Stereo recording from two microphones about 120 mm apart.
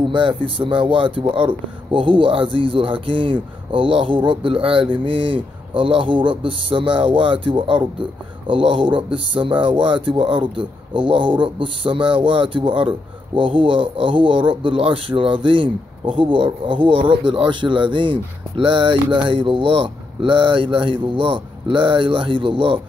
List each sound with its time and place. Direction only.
0.1 s speech: 45° right (ahead or behind)